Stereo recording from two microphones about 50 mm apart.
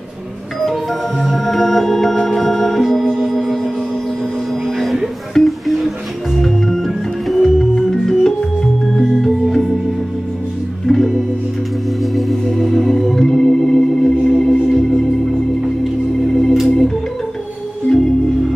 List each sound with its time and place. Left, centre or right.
1.2 s organ: centre
3.3 s music: centre
6.4 s organ: centre
10.9 s music: centre
12.0 s organ: centre
12.4 s music: centre
16.6 s organ: centre
17.9 s music: centre